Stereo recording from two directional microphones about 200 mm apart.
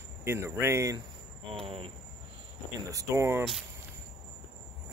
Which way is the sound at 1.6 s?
30° right (ahead or behind).